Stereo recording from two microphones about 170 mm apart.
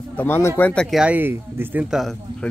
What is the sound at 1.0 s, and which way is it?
Speech, 10° right (ahead or behind).